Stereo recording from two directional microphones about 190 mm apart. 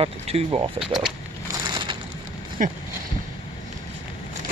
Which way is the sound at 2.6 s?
45° right (ahead or behind).